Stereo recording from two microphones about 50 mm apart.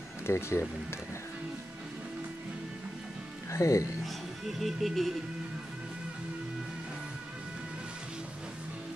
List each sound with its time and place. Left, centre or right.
0.3 s speech: left
3.5 s speech: left
4.0 s speech: centre